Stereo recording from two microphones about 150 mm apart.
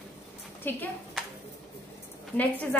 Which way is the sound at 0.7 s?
15° left (ahead or behind).